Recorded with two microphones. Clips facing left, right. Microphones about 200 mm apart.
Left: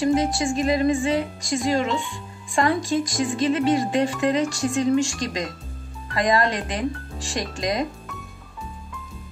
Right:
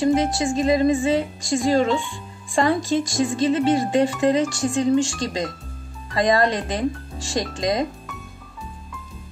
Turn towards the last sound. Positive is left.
turn(degrees=-25)  # may be behind; listen again after turning